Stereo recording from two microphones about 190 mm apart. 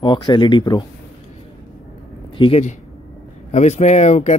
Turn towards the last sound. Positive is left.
turn(degrees=35)  # may be behind; listen again after turning